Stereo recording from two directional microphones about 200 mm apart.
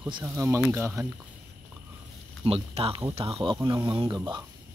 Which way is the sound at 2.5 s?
30° right (ahead or behind).